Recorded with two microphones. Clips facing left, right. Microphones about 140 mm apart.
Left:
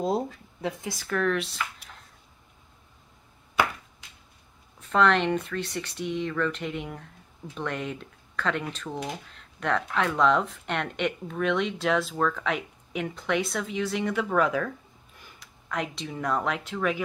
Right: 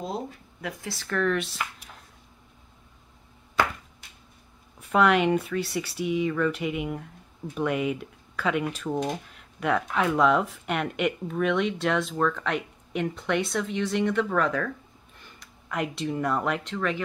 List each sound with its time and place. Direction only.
0.6 s speech: 25° left (ahead or behind)
0.9 s speech: 5° left (ahead or behind)
4.7 s speech: 10° right (ahead or behind); by 17.0 s 5° left (ahead or behind)